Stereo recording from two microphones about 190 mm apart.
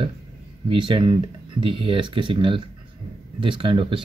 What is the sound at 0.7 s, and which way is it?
Speech, 25° right (ahead or behind).